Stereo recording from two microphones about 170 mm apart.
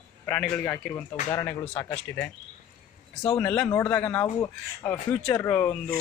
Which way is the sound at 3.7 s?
15° left (ahead or behind).